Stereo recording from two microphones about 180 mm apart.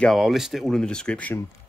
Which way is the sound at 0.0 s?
Centre (ahead or behind).